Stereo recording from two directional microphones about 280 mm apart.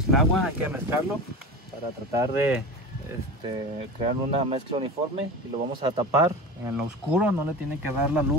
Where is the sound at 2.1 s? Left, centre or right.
Centre.